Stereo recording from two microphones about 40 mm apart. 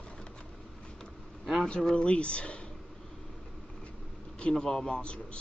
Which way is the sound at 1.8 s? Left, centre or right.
Left.